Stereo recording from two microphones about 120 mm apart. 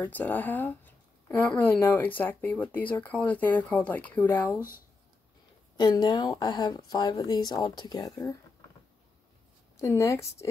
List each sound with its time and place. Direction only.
0.0 s speech: 15° left (ahead or behind)
5.8 s speech: 35° left (ahead or behind)
9.8 s a woman's voice: 25° left (ahead or behind)